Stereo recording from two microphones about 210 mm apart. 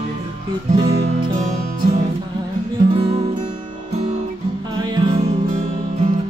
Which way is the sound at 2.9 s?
25° right (ahead or behind).